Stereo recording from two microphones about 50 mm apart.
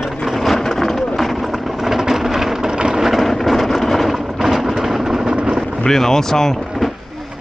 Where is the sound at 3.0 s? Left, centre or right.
Centre.